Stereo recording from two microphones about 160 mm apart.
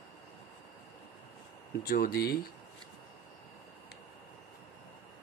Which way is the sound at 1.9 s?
70° left (ahead or behind).